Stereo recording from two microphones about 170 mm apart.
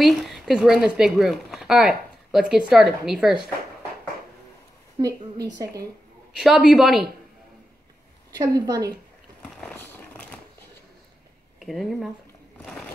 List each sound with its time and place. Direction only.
0.0 s speech: centre (ahead or behind)
5.6 s a woman's voice: 20° right (ahead or behind)
6.3 s a woman's voice: centre (ahead or behind)
8.3 s a woman's voice: 20° right (ahead or behind)
9.4 s a sound: 5° left (ahead or behind)
11.6 s a woman's voice: centre (ahead or behind)